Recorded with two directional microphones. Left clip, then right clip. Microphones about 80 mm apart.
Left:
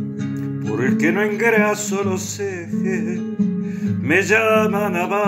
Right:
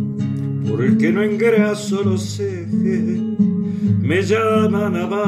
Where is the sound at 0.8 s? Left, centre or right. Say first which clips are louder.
Right 1 dB; right.